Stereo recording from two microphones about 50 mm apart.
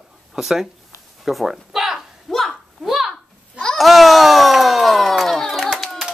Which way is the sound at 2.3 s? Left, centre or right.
Centre.